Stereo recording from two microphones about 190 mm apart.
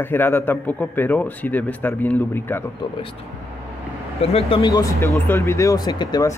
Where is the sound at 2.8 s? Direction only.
30° left (ahead or behind).